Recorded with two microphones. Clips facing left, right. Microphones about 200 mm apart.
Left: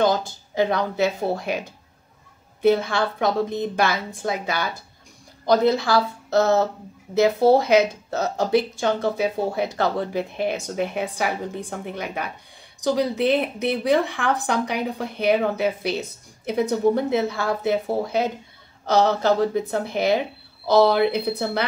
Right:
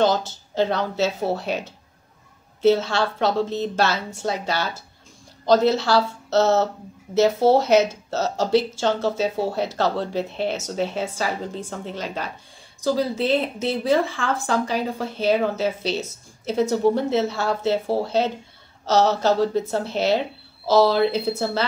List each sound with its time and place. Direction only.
0.0 s speech: 15° left (ahead or behind)
7.7 s speech: 15° left (ahead or behind)